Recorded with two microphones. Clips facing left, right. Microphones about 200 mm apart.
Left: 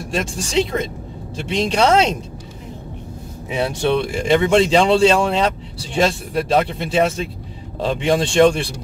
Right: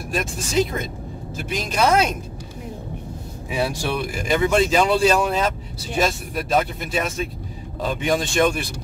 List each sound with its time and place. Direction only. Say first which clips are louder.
0.1 s speech: left 2 dB; 30° left (ahead or behind)
3.4 s speech: left 5 dB; 25° left (ahead or behind)